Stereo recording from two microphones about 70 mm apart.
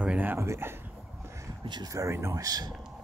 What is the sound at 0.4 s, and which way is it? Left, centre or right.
Speech, right.